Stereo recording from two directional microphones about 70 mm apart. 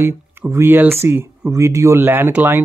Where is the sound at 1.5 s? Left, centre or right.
Right.